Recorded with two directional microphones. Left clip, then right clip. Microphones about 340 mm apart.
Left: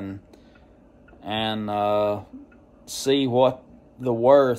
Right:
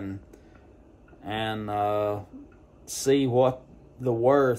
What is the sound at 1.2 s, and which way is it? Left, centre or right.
Speech, centre.